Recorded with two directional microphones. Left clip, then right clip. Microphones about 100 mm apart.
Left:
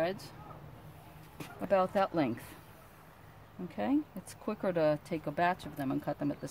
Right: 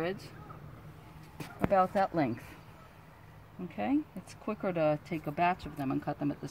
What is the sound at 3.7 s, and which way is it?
Speech, 25° left (ahead or behind).